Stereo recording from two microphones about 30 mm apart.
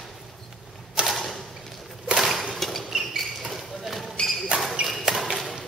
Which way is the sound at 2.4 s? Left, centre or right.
Centre.